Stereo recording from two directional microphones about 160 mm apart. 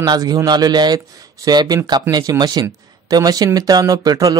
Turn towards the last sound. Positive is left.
turn(degrees=-20)  # may be behind; listen again after turning